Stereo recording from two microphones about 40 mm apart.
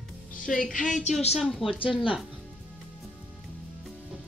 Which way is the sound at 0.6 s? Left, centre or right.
Left.